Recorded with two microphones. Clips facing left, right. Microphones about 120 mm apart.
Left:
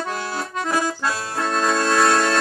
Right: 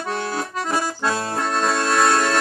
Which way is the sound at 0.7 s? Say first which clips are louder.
Right 1 dB; 30° right (ahead or behind).